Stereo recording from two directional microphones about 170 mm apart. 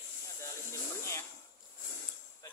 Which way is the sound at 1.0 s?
15° left (ahead or behind).